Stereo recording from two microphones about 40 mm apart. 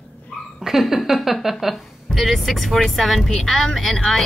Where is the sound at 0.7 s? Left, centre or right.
Centre.